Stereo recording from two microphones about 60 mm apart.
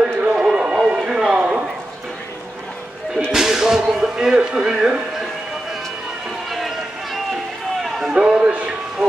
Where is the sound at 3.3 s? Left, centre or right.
Centre.